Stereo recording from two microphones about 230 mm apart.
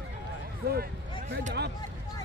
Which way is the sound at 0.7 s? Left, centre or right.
Right.